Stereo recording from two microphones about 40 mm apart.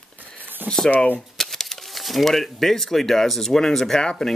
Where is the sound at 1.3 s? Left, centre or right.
Centre.